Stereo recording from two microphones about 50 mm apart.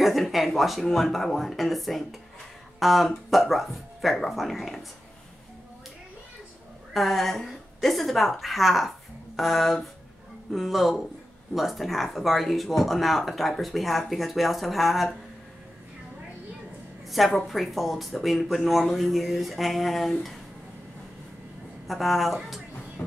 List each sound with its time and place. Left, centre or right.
0.0 s speech: centre
6.9 s speech: centre
17.1 s a woman's voice: centre
21.8 s speech: centre
23.0 s music: left